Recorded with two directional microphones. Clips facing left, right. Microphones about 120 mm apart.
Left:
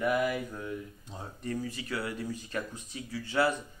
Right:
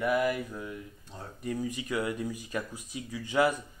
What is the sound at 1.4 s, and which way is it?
Speech, 15° right (ahead or behind).